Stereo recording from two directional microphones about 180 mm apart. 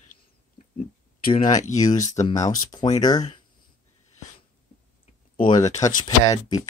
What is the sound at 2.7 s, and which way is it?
Speech, 20° left (ahead or behind).